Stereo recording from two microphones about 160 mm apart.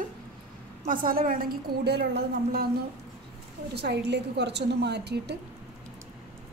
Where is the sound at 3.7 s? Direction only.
90° right.